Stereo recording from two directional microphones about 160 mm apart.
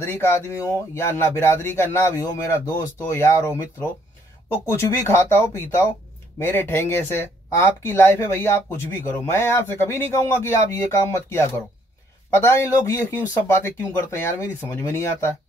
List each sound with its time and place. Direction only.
0.0 s speech: 15° left (ahead or behind)